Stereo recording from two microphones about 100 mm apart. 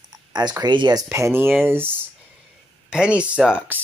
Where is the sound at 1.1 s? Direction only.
25° right (ahead or behind).